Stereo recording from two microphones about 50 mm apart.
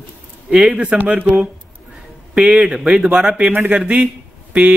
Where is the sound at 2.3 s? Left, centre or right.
Centre.